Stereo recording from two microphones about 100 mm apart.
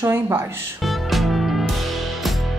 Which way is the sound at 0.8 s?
Centre (ahead or behind).